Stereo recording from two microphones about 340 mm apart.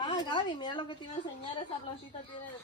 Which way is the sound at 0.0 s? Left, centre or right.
Centre.